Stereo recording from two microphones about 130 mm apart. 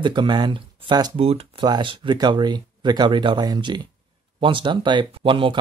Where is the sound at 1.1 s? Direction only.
50° right (ahead or behind).